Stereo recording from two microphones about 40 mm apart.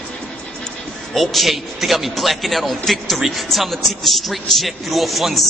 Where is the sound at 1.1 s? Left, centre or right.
Centre.